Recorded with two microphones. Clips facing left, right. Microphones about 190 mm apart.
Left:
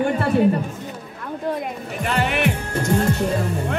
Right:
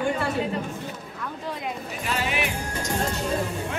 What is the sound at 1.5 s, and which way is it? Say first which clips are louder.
Music: left 5 dB; 60° left (ahead or behind).